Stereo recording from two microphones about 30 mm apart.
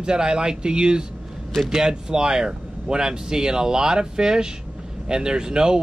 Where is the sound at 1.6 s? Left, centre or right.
Centre.